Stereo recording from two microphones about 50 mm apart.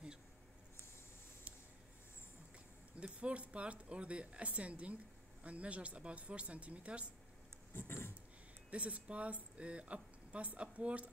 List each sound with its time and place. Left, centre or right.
3.0 s speech: right
7.7 s a sound: left
8.6 s speech: right